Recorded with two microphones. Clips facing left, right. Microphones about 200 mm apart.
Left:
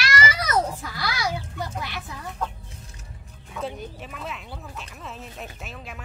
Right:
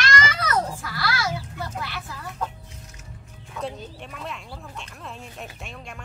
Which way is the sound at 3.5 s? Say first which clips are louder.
Even; centre (ahead or behind).